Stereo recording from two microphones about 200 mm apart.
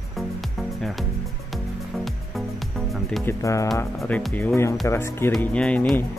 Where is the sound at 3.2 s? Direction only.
15° left (ahead or behind).